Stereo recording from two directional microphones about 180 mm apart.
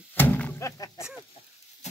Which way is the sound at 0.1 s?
10° left (ahead or behind).